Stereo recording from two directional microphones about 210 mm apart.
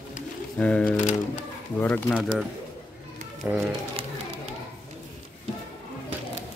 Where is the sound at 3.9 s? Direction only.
25° right (ahead or behind).